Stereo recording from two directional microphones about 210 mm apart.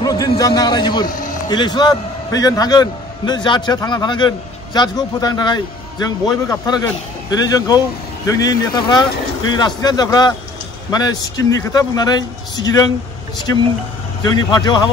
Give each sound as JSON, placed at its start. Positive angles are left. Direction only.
{"t": 0.0, "sound": "a man's voice", "side_deg": 20}
{"t": 14.2, "sound": "a man's voice", "side_deg": 20}